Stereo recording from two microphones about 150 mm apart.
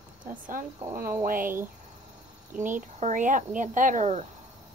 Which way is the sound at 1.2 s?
65° right (ahead or behind).